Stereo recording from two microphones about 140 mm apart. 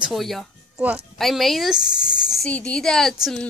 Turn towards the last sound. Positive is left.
turn(degrees=0)  # may be behind; listen again after turning